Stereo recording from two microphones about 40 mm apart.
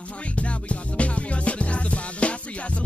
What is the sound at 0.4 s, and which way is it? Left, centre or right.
Music, left.